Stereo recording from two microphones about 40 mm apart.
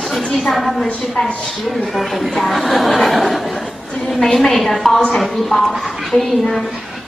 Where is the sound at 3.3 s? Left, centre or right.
Centre.